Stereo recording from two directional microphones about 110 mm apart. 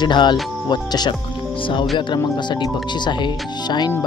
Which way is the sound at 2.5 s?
45° left (ahead or behind).